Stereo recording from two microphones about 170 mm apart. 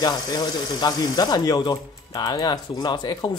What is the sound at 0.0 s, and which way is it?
Speech, 25° left (ahead or behind).